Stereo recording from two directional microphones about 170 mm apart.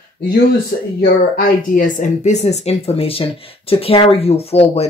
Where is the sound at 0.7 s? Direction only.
60° left (ahead or behind).